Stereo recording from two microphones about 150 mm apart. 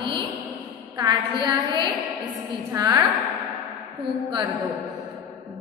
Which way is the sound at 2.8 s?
25° right (ahead or behind).